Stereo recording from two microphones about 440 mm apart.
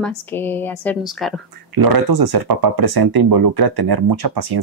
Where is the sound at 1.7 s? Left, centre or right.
Right.